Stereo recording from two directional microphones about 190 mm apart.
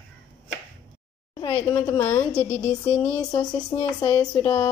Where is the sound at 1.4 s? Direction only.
30° left (ahead or behind).